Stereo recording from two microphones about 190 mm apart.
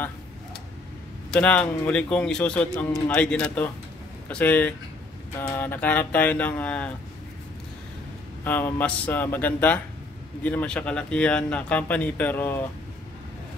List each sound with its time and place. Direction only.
1.3 s speech: 5° left (ahead or behind)
8.5 s speech: 10° left (ahead or behind)